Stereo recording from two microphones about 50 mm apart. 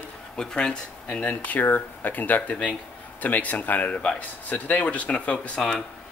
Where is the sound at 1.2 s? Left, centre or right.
Left.